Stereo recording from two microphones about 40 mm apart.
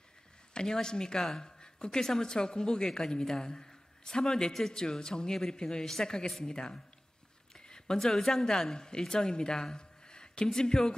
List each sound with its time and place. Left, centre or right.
0.6 s a woman's voice: centre